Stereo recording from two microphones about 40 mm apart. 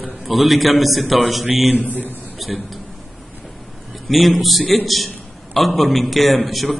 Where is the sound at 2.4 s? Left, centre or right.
Centre.